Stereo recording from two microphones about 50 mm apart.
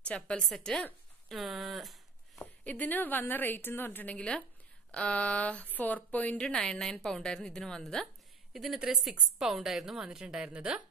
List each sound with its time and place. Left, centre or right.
0.1 s a woman's voice: left
1.3 s speech: centre
2.6 s a woman's voice: left
4.0 s a woman's voice: left
6.3 s a woman's voice: centre
8.5 s a woman's voice: centre